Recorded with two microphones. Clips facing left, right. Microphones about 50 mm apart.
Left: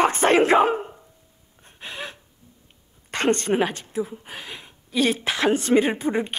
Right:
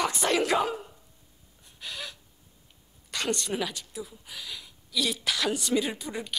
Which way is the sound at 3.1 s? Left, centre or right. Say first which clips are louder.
Left 9 dB; left.